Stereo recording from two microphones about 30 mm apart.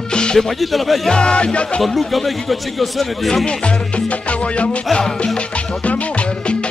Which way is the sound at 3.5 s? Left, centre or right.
Left.